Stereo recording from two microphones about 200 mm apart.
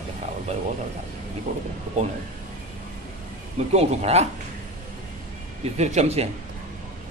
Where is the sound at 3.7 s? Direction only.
35° right (ahead or behind).